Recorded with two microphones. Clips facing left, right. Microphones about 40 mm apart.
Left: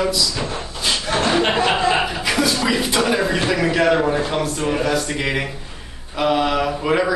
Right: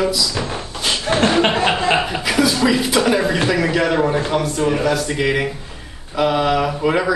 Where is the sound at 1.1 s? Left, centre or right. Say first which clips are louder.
Right 4 dB; right.